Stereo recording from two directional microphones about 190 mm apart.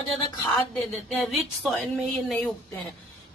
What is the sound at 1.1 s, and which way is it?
Speech, centre (ahead or behind).